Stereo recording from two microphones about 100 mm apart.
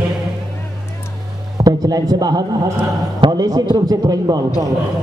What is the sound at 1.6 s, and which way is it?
A man's voice, 40° right (ahead or behind).